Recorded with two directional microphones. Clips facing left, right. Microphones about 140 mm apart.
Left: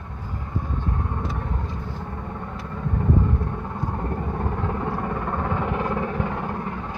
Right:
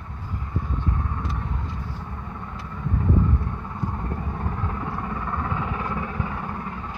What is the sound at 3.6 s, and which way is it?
Vehicle, 45° left (ahead or behind).